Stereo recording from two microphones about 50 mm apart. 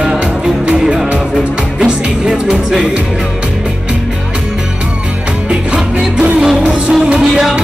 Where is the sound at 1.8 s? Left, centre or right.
Centre.